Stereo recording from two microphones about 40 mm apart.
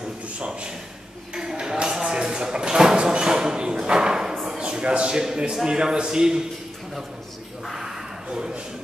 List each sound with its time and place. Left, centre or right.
1.6 s a sound: right
5.5 s a man's voice: centre
7.6 s speech: centre
8.3 s a man's voice: centre